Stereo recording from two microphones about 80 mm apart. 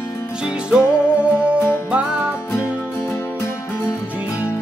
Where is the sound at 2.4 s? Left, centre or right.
Left.